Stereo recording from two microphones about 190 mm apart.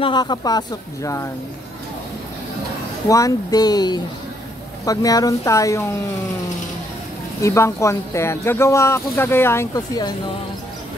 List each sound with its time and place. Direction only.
0.0 s speech: 25° left (ahead or behind)
3.1 s speech: 15° left (ahead or behind)
7.4 s speech: 15° left (ahead or behind)